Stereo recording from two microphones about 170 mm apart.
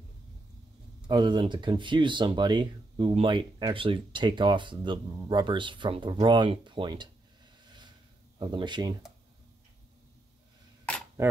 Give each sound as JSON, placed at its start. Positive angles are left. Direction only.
{"t": 1.0, "sound": "speech", "side_deg": -25}
{"t": 7.6, "sound": "snort", "side_deg": -25}
{"t": 8.4, "sound": "speech", "side_deg": -25}
{"t": 11.2, "sound": "a sound", "side_deg": -15}